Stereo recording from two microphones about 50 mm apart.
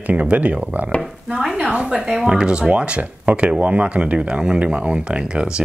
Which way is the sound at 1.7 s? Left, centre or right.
Right.